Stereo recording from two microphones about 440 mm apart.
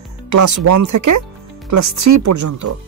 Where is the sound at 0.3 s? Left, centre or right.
Right.